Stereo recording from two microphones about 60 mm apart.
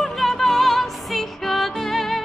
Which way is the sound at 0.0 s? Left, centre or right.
Centre.